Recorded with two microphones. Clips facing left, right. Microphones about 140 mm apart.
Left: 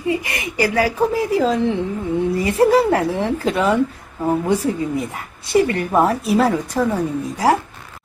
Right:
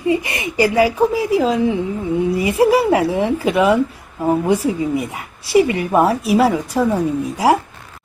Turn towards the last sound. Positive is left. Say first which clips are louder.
# right 2 dB
turn(degrees=-15)  # may be behind; listen again after turning